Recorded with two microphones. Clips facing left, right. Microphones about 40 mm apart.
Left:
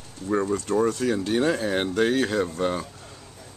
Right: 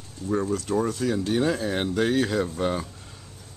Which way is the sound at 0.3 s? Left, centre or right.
Centre.